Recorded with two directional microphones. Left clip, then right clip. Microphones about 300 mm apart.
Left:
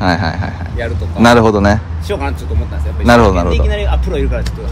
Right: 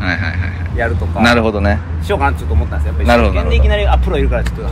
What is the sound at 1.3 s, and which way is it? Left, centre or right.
Speech, right.